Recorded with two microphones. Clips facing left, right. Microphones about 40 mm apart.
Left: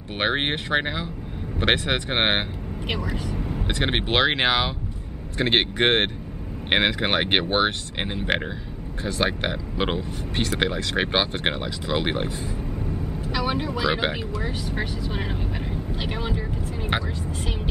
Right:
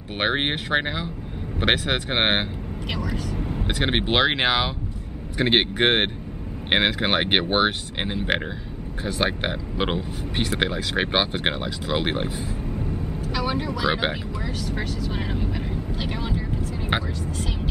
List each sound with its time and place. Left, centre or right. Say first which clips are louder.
0.2 s speech: even; centre
13.5 s speech: left 1 dB; left
13.8 s speech: even; centre
14.6 s speech: even; centre
15.1 s vehicle: right 1 dB; centre